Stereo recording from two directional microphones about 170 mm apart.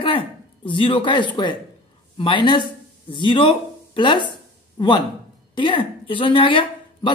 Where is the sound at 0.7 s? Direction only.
30° left (ahead or behind).